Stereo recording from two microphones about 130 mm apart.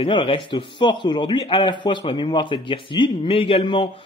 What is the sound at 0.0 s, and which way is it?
Speech, 40° left (ahead or behind).